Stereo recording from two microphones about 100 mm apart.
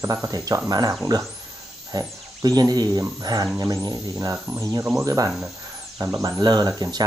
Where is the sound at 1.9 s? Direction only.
40° right (ahead or behind).